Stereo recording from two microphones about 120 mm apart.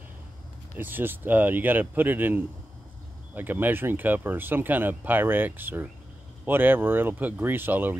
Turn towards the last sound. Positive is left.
turn(degrees=-15)  # may be behind; listen again after turning